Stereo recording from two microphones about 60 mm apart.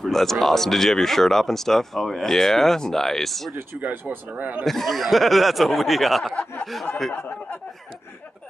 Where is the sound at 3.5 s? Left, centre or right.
Right.